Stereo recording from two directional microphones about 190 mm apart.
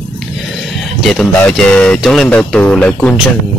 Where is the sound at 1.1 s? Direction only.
Centre (ahead or behind).